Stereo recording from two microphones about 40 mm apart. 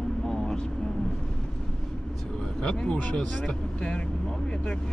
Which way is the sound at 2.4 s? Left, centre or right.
Left.